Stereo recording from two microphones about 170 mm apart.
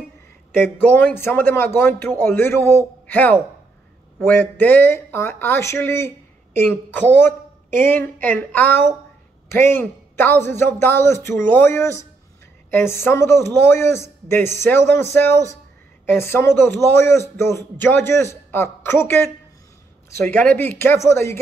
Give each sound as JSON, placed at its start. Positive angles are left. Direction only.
{"t": 0.6, "sound": "speech", "side_deg": 10}